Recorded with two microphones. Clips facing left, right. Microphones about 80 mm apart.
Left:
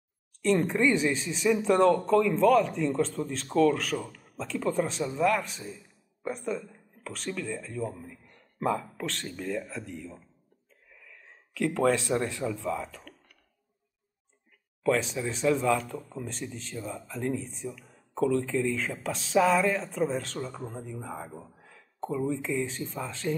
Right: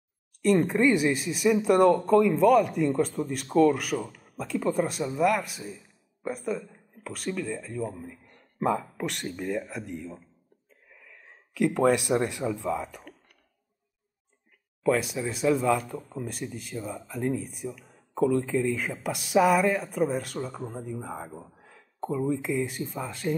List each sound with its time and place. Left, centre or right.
0.4 s speech: centre
14.8 s speech: centre